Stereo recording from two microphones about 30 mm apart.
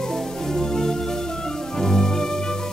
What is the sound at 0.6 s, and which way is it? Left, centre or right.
Music, centre.